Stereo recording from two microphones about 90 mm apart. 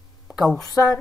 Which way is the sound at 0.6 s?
35° left (ahead or behind).